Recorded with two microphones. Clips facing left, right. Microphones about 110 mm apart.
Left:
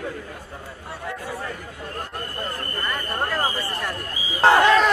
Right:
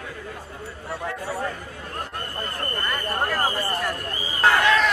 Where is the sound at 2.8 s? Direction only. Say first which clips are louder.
Even; centre (ahead or behind).